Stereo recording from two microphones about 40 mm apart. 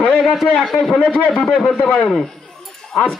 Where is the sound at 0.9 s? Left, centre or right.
Left.